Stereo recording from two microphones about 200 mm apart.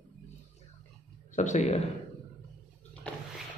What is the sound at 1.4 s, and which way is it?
Speech, 35° left (ahead or behind).